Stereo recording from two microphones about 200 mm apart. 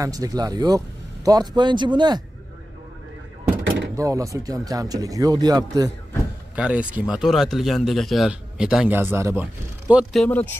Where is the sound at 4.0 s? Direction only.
15° right (ahead or behind).